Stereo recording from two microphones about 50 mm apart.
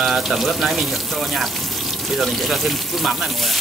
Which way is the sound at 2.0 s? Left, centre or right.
Centre.